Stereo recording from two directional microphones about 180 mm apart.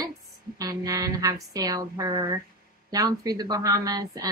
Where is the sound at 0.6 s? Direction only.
20° right (ahead or behind).